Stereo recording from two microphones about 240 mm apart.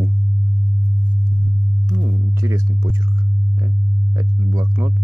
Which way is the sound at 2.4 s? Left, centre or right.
Centre.